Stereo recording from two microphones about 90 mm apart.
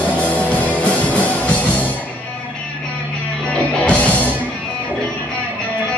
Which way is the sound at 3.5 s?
15° left (ahead or behind).